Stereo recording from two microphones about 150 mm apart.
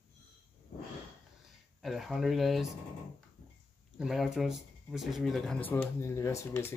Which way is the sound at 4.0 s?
5° right (ahead or behind).